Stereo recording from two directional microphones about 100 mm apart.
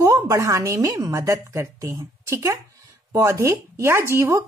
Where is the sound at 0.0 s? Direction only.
30° right (ahead or behind).